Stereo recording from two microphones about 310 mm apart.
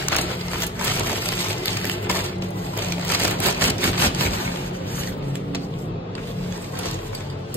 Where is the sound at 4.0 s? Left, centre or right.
Centre.